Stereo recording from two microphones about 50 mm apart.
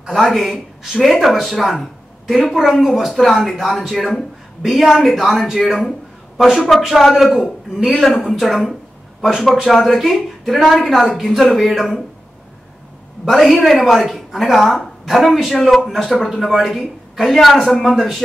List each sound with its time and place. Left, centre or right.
0.0 s speech: centre
5.6 s speech: centre
6.3 s speech: centre
13.3 s speech: centre